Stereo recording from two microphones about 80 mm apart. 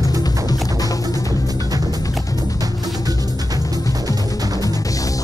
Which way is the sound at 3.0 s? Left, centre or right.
Right.